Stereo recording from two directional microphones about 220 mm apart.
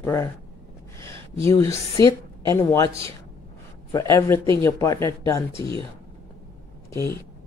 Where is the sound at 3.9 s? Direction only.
15° left (ahead or behind).